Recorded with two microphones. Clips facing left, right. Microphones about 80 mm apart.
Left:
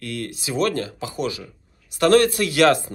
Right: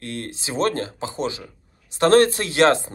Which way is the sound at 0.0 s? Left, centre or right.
Right.